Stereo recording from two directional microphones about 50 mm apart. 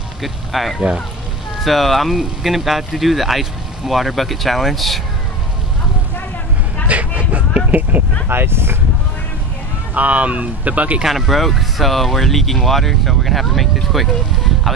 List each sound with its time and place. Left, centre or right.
0.2 s speech: centre
0.7 s speech: centre
1.6 s speech: centre
6.9 s vehicle: right
7.7 s speech: right
8.3 s speech: right
9.9 s speech: right
11.0 s speech: centre